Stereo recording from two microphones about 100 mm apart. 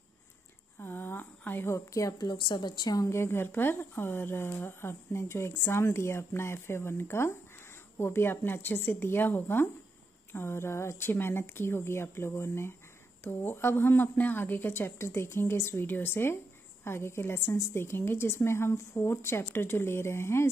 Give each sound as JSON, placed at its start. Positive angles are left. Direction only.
{"t": 0.7, "sound": "a sound", "side_deg": 20}
{"t": 2.2, "sound": "a woman's voice", "side_deg": 50}
{"t": 3.1, "sound": "speech", "side_deg": 25}